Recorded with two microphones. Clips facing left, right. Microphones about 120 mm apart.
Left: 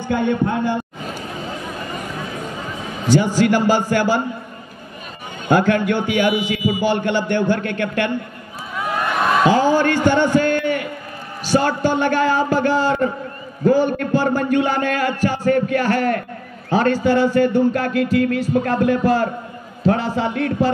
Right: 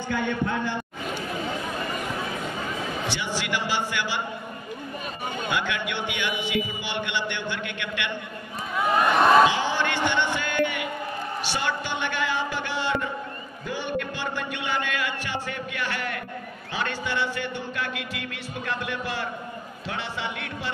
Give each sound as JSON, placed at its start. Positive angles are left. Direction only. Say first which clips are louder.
{"t": 0.1, "sound": "speech", "louder": "left 8 dB", "side_deg": 45}
{"t": 3.1, "sound": "speech", "louder": "left 19 dB", "side_deg": 45}
{"t": 5.5, "sound": "speech", "louder": "left 15 dB", "side_deg": 45}
{"t": 8.7, "sound": "a sound", "louder": "even", "side_deg": 0}
{"t": 9.5, "sound": "a sound", "louder": "left 11 dB", "side_deg": 45}
{"t": 11.4, "sound": "a man's voice", "louder": "left 14 dB", "side_deg": 40}